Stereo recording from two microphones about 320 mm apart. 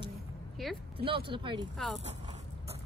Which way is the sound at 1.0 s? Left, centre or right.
Centre.